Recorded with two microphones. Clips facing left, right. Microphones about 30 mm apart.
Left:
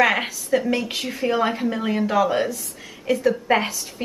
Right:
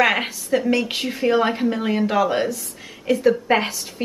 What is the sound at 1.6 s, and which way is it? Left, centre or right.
Speech, centre.